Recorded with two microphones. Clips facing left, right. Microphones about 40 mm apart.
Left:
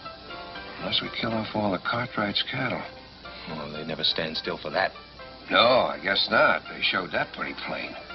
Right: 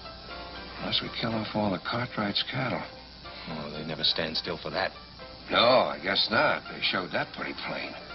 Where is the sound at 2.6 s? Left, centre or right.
Centre.